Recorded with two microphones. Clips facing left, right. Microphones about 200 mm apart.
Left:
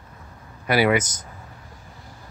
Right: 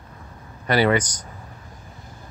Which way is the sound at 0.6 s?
10° left (ahead or behind).